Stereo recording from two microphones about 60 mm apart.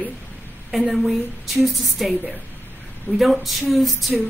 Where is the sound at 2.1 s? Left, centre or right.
Right.